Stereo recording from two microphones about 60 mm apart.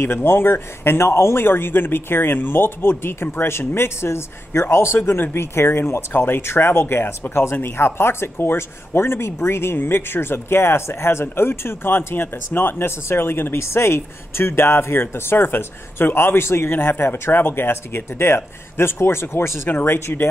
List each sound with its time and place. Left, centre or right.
0.0 s a man's voice: left